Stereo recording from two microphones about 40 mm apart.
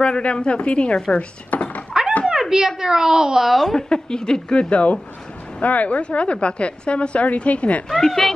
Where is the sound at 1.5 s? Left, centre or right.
Left.